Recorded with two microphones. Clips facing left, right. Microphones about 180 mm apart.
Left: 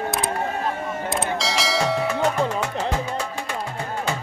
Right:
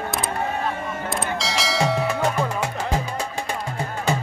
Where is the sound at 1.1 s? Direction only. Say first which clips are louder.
Left 2 dB; centre (ahead or behind).